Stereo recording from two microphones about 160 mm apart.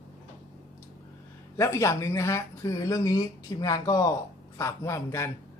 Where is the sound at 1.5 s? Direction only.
20° left (ahead or behind).